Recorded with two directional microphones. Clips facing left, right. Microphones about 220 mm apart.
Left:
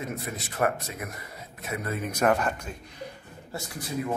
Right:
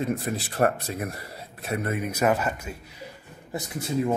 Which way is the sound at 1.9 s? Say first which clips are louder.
Even; 10° right (ahead or behind).